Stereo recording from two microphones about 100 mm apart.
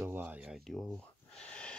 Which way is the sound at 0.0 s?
20° right (ahead or behind).